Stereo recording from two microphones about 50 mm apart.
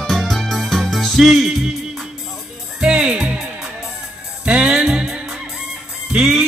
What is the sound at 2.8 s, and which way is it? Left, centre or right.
Music, centre.